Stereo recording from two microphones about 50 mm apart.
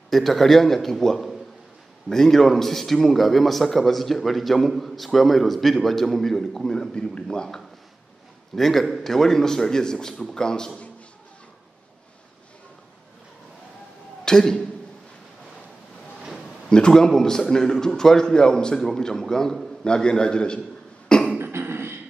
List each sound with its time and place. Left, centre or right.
0.1 s a man's voice: centre
8.5 s a man's voice: centre
14.2 s a man's voice: centre
16.4 s a man's voice: centre
21.4 s beatboxing: right